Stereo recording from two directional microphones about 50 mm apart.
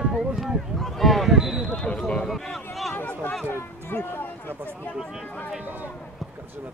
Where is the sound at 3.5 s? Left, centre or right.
Left.